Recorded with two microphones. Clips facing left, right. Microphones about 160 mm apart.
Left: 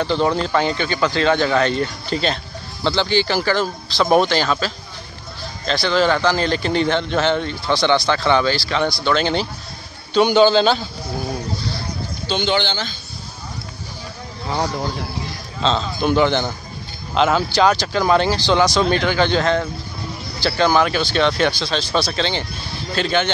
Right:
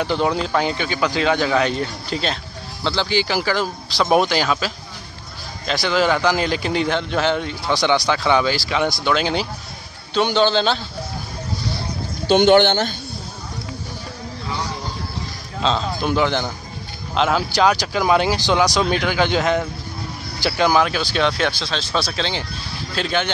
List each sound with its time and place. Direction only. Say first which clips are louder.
0.0 s a man's voice: left 1 dB; 10° right (ahead or behind)
10.1 s speech: left 4 dB; 5° left (ahead or behind)
12.3 s speech: right 8 dB; 55° right (ahead or behind)
15.6 s a man's voice: left 1 dB; centre (ahead or behind)